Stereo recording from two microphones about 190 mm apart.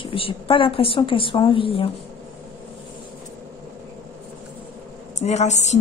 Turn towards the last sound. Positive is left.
turn(degrees=35)  # may be behind; listen again after turning